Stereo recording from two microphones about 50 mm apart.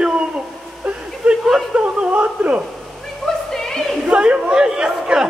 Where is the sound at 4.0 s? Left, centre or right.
Right.